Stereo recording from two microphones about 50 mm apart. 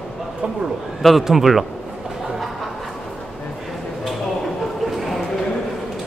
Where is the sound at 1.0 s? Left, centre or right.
Centre.